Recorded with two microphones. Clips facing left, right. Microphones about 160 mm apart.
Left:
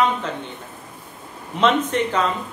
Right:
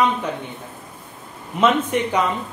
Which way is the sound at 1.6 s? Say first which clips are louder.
Right 1 dB; 10° right (ahead or behind).